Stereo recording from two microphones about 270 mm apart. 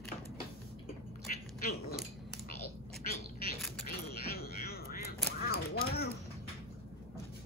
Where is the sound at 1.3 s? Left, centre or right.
Left.